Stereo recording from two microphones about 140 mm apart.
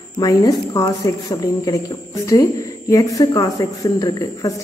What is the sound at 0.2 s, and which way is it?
Speech, 25° left (ahead or behind).